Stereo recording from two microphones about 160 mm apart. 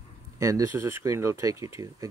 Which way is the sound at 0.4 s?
20° right (ahead or behind).